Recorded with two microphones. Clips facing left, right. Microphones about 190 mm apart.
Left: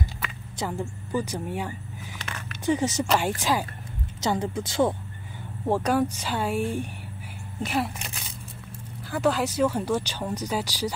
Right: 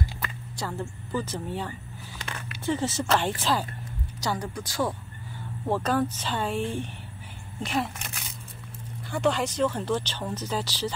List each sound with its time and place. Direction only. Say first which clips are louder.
0.6 s speech: left 3 dB; 15° left (ahead or behind)
4.2 s speech: left 4 dB; 25° left (ahead or behind)
5.7 s speech: left 2 dB; 10° left (ahead or behind)
9.1 s speech: left 1 dB; 5° left (ahead or behind)